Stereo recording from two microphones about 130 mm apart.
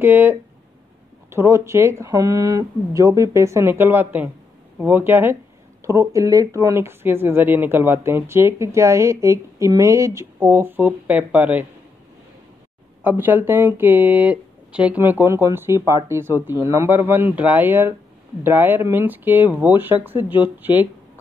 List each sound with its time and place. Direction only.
0.0 s speech: 15° right (ahead or behind)
13.0 s speech: 15° right (ahead or behind)